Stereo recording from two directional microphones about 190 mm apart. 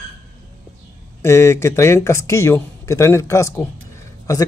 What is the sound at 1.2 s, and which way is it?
Speech, 15° left (ahead or behind).